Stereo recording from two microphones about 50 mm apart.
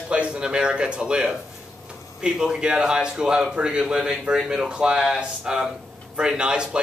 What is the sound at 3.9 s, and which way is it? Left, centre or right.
A man's voice, centre.